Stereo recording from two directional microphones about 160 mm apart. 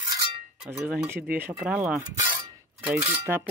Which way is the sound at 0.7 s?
10° right (ahead or behind).